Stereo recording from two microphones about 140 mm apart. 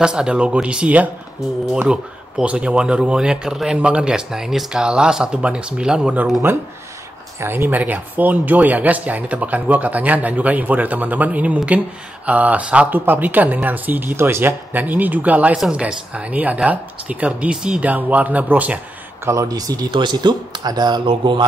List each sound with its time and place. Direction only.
0.0 s speech: 5° right (ahead or behind)
19.2 s speech: 25° right (ahead or behind)